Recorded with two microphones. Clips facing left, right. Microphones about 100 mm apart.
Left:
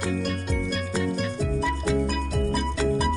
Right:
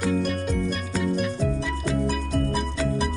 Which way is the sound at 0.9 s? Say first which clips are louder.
Right 2 dB; centre (ahead or behind).